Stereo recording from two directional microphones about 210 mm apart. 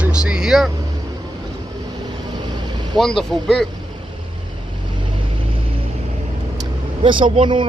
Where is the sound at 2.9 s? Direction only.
Centre (ahead or behind).